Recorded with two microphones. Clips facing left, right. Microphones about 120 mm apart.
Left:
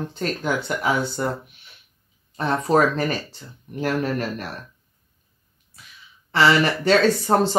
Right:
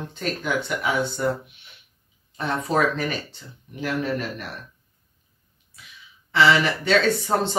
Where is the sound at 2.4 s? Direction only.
35° left (ahead or behind).